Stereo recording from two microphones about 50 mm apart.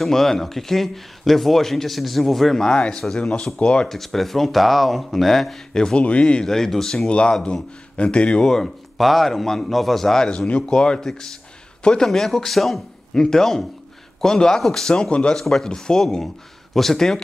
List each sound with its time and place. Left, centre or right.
0.0 s a man's voice: centre
3.9 s speech: centre
5.7 s a man's voice: centre
6.4 s a man's voice: centre
7.1 s speech: left
8.4 s a man's voice: centre
15.3 s a man's voice: centre